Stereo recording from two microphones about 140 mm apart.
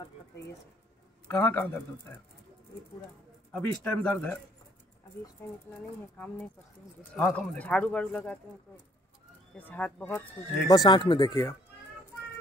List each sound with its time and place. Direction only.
1.2 s speech: 15° left (ahead or behind)
3.8 s speech: 10° left (ahead or behind)
5.8 s speech: 10° left (ahead or behind)
9.6 s speech: 10° left (ahead or behind)
10.7 s speech: 30° left (ahead or behind)